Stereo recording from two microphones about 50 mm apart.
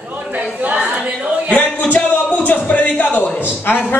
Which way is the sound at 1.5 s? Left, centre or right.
Left.